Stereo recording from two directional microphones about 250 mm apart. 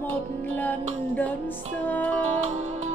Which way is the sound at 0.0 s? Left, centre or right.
Centre.